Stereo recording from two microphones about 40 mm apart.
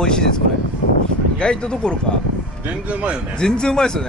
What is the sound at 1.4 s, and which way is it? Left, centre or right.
Speech, left.